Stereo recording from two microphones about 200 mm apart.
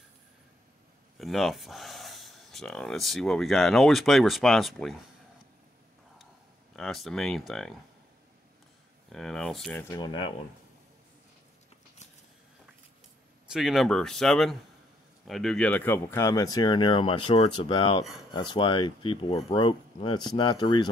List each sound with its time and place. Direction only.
1.2 s speech: centre (ahead or behind)
6.7 s speech: centre (ahead or behind)
9.1 s speech: 5° left (ahead or behind)
9.9 s speech: 25° left (ahead or behind)
13.5 s speech: centre (ahead or behind); by 20.9 s 20° left (ahead or behind)